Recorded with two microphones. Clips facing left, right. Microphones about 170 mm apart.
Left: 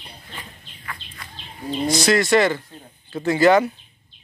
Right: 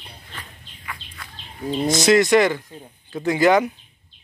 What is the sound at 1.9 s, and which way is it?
Speech, 20° right (ahead or behind).